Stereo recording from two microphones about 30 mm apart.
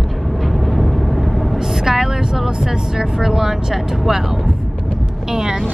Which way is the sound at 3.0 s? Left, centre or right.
Centre.